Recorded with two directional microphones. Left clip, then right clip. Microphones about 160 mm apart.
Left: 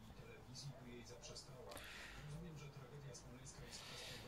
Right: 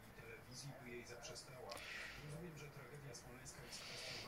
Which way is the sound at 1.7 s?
35° left (ahead or behind).